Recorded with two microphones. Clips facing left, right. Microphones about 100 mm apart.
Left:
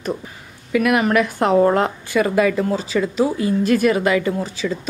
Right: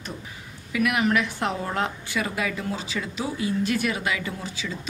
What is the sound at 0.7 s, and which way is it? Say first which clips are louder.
A woman's voice: left 6 dB; 50° left (ahead or behind).